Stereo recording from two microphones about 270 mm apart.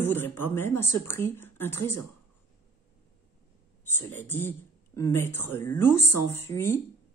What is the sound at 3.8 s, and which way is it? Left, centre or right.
A woman's voice, centre.